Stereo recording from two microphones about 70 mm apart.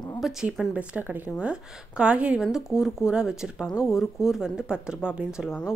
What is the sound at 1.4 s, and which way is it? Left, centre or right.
Speech, centre.